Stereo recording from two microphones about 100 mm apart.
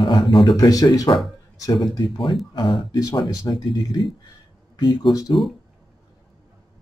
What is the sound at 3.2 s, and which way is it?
Speech, 45° left (ahead or behind).